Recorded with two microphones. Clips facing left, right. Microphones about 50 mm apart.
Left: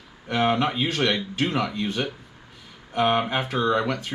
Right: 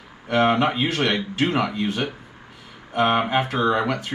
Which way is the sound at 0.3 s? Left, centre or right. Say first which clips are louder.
Right 3 dB; right.